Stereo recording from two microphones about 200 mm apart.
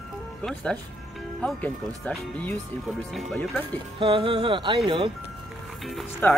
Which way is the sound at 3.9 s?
25° right (ahead or behind).